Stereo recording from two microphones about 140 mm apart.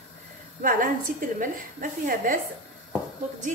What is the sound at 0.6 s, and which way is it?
A woman's voice, 75° right (ahead or behind).